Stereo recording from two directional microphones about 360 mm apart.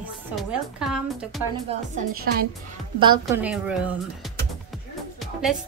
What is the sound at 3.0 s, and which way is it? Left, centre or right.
Speech, centre.